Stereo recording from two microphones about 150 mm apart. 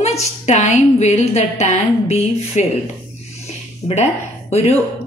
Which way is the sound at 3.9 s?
45° left (ahead or behind).